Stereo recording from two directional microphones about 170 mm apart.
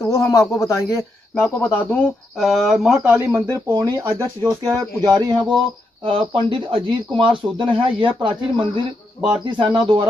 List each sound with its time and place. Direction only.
0.0 s speech: 20° left (ahead or behind); by 10.0 s 30° right (ahead or behind)